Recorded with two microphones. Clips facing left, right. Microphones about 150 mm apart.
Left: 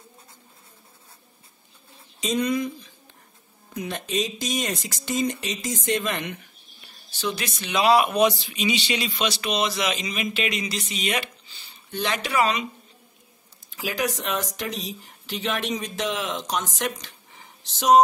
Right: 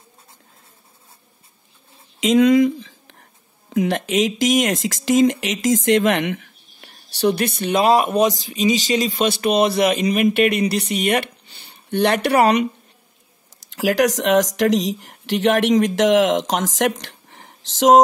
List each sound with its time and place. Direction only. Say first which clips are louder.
2.1 s a sound: right 11 dB; 90° right
3.7 s speech: right 9 dB; 85° right; by 12.6 s 65° right (ahead or behind)
13.6 s speech: right 10 dB; 90° right